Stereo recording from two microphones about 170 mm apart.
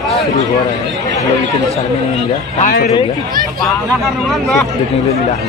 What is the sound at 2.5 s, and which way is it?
Speech, 50° left (ahead or behind).